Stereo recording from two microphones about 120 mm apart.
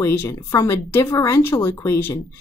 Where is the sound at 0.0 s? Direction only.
20° left (ahead or behind).